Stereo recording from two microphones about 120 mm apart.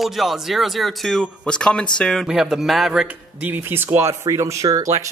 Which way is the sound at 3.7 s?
20° right (ahead or behind).